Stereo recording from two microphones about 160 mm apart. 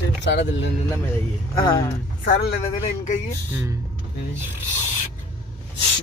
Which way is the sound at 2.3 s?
85° left.